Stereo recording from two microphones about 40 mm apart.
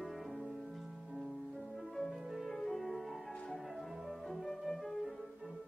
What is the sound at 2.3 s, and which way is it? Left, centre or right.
Music, centre.